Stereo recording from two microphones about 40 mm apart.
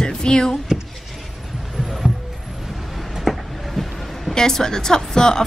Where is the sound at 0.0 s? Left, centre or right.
Centre.